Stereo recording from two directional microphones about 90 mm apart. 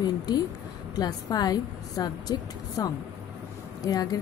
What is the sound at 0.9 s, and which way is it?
A woman's voice, 50° left (ahead or behind).